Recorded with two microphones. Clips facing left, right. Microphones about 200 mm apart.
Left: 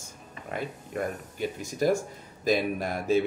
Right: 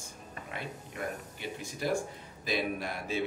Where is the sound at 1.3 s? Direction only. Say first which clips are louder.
Left 8 dB; 45° left (ahead or behind).